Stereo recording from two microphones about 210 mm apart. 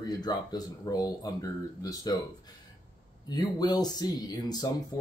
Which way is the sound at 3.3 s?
20° left (ahead or behind).